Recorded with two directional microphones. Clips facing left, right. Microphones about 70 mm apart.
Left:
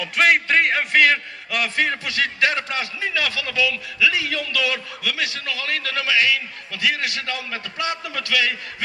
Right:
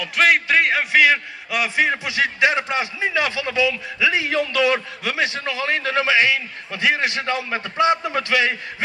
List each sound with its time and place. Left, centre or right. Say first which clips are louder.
0.0 s a man's voice: right 1 dB; centre; by 8.8 s right